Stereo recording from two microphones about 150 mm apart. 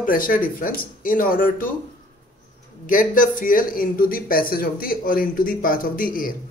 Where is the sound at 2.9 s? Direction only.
65° left (ahead or behind).